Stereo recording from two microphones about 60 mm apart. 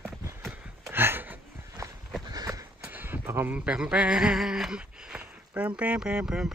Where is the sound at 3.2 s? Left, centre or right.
Right.